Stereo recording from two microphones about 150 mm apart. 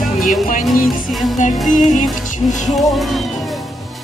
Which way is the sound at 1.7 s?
60° left (ahead or behind).